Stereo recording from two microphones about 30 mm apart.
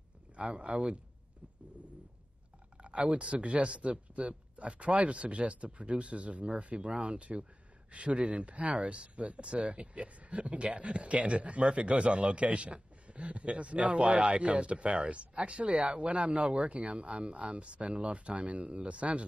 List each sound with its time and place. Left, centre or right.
0.4 s speech: right
2.8 s speech: right
7.2 s speech: right